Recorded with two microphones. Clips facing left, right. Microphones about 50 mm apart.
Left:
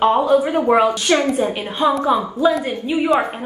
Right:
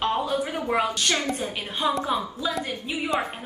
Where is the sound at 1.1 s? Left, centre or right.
Left.